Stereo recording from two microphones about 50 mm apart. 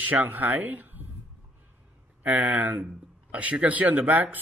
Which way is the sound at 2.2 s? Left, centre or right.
Right.